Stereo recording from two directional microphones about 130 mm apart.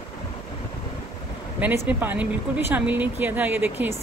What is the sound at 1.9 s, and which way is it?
Speech, 15° right (ahead or behind).